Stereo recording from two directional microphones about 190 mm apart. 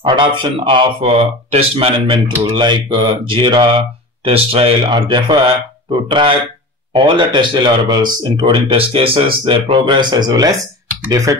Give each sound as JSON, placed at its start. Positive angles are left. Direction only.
{"t": 0.0, "sound": "a man's voice", "side_deg": -25}